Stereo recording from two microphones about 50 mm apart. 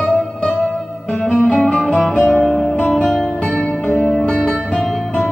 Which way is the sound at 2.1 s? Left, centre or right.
Left.